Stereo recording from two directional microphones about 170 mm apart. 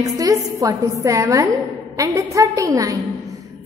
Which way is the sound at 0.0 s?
20° right (ahead or behind).